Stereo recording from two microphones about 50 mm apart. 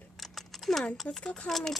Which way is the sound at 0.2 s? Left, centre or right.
Centre.